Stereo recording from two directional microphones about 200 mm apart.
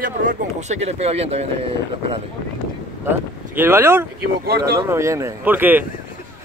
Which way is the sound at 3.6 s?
10° right (ahead or behind).